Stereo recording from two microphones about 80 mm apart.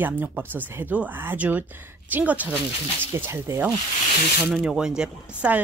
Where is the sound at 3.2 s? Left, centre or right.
Right.